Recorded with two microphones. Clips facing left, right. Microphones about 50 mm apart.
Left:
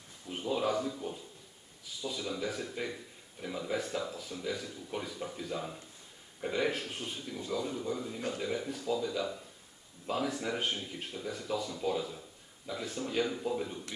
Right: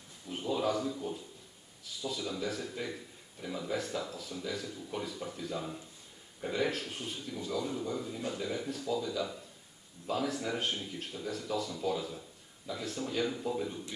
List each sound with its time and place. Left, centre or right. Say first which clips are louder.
0.3 s a sound: even; centre
0.8 s a man's voice: right 1 dB; centre
2.0 s a man's voice: even; centre
7.7 s a man's voice: even; centre
11.1 s a man's voice: left 1 dB; centre